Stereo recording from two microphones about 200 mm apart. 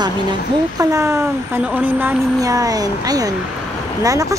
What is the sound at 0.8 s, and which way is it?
Speech, 15° right (ahead or behind).